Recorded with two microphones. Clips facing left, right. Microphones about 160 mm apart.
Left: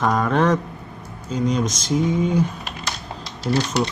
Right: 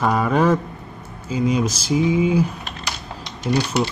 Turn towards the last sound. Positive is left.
turn(degrees=-5)  # may be behind; listen again after turning